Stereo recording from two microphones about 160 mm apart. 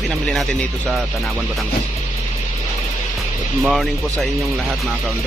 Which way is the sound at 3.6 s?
Centre (ahead or behind).